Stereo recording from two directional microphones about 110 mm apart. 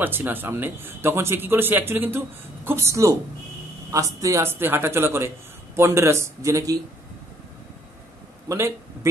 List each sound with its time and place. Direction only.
0.0 s speech: 20° right (ahead or behind)
8.5 s speech: 25° right (ahead or behind)